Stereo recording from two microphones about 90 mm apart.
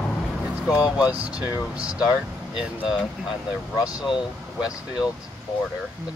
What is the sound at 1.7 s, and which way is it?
Speech, 10° right (ahead or behind).